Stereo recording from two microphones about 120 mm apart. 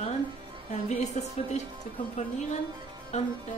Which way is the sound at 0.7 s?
70° left (ahead or behind).